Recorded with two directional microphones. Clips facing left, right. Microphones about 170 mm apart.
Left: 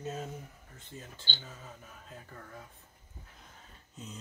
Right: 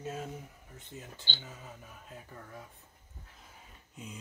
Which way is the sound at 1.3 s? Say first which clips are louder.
Right 1 dB; 15° right (ahead or behind).